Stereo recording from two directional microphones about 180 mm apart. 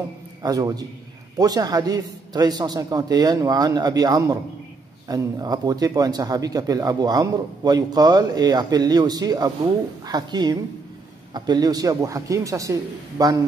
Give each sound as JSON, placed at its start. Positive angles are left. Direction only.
{"t": 0.4, "sound": "speech", "side_deg": -20}